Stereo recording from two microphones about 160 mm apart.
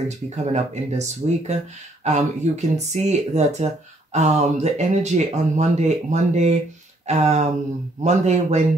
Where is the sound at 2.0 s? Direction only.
45° right (ahead or behind).